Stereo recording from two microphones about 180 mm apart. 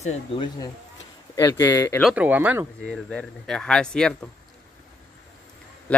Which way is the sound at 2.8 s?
5° left (ahead or behind).